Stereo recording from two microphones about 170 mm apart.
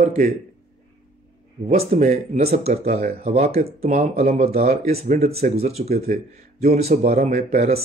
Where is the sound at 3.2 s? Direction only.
40° right (ahead or behind).